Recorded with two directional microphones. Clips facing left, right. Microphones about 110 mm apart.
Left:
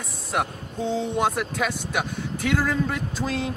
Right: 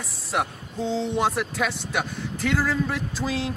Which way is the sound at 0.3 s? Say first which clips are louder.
Even; centre (ahead or behind).